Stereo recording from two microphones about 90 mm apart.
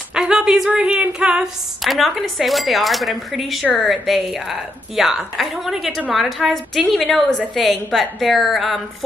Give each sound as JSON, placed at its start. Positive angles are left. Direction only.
{"t": 0.1, "sound": "a woman's voice", "side_deg": -5}